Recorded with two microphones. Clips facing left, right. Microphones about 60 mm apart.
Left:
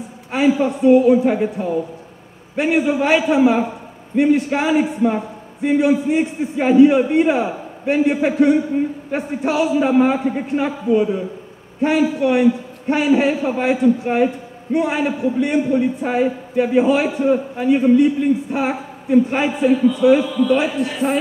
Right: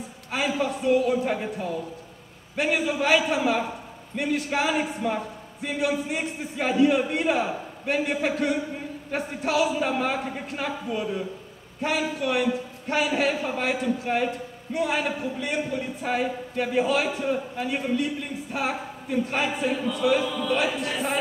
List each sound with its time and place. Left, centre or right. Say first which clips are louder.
0.3 s a man's voice: left 9 dB; left
11.8 s a man's voice: left 10 dB; left
19.6 s a man's voice: left 11 dB; centre